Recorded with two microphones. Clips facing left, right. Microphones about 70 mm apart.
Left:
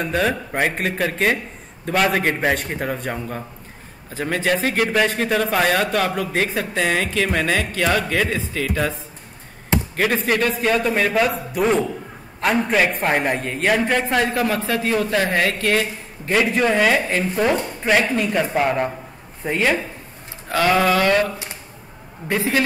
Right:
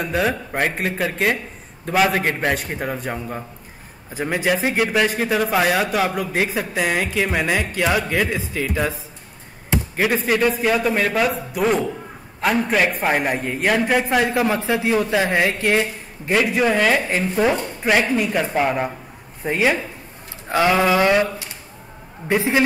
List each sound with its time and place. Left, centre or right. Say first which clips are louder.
0.0 s a man's voice: even; centre
9.9 s a man's voice: right 1 dB; centre
16.3 s a man's voice: even; centre
22.3 s a man's voice: right 2 dB; centre